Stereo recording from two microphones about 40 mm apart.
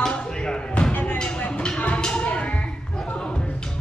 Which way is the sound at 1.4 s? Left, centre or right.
Left.